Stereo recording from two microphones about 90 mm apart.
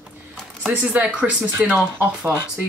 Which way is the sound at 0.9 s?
15° right (ahead or behind).